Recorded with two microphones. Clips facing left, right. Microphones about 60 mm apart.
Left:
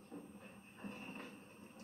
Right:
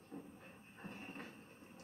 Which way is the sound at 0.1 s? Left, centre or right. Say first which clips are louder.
Right 1 dB; centre.